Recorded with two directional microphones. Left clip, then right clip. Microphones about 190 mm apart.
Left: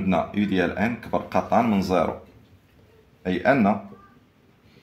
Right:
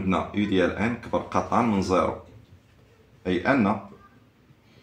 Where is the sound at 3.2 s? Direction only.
35° left (ahead or behind).